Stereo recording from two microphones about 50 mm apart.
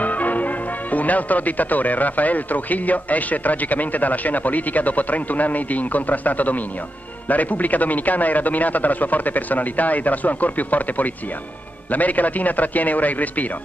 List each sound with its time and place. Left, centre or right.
0.0 s music: left
0.9 s speech: left